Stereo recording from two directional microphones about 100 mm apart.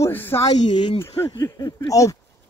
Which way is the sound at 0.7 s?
55° left (ahead or behind).